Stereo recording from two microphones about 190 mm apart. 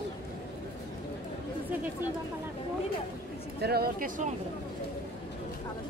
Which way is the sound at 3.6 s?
55° right (ahead or behind).